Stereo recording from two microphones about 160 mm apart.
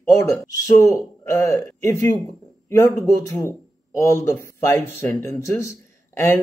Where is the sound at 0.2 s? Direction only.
20° left (ahead or behind).